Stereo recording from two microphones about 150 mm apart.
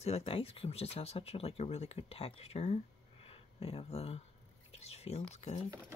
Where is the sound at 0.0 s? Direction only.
40° left (ahead or behind).